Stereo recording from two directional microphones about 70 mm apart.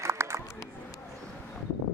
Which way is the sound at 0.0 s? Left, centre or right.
Right.